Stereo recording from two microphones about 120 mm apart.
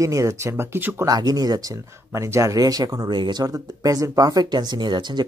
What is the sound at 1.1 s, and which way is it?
Speech, 35° right (ahead or behind).